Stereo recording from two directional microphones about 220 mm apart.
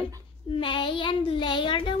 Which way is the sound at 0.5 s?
25° left (ahead or behind).